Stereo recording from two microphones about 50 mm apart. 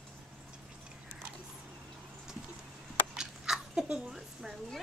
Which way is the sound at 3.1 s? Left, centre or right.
Centre.